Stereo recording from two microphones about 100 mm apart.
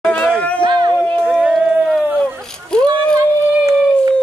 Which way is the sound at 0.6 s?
50° right (ahead or behind).